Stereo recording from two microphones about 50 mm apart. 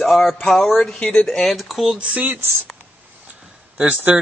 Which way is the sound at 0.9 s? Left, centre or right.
Left.